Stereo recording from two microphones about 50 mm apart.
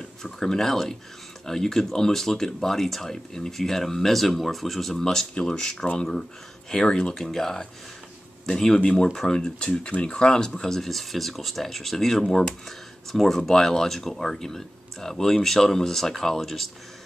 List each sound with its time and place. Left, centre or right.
0.2 s speech: centre